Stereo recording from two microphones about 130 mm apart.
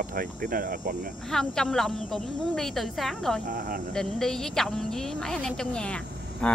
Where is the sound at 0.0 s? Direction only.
90° right.